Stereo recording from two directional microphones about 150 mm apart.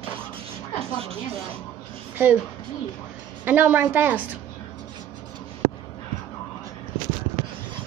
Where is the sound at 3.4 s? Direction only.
10° right (ahead or behind).